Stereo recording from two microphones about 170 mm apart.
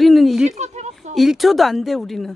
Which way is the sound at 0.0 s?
Centre (ahead or behind).